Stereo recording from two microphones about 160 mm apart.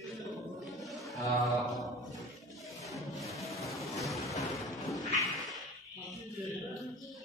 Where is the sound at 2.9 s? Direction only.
Centre (ahead or behind).